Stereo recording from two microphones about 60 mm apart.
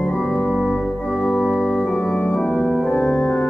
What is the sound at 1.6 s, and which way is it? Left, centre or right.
Organ, centre.